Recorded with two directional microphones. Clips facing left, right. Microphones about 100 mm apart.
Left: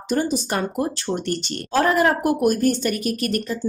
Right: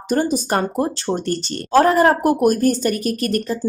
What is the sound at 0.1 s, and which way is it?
Speech, 45° right (ahead or behind).